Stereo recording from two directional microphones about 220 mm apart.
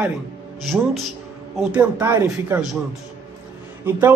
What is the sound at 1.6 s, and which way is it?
A man's voice, 5° right (ahead or behind).